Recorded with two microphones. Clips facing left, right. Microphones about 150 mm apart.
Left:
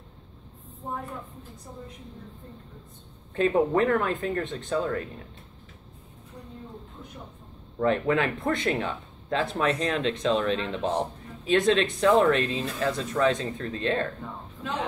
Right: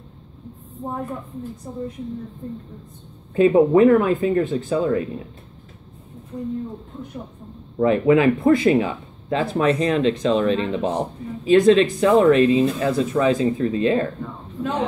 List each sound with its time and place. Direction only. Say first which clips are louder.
3.3 s speech: right 9 dB; 5° right (ahead or behind)
7.8 s speech: right 8 dB; 5° right (ahead or behind)